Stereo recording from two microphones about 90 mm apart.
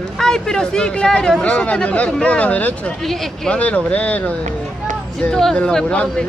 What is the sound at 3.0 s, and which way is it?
Speech, centre (ahead or behind).